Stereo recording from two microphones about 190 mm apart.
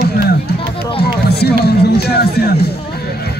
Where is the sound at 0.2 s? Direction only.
60° left (ahead or behind).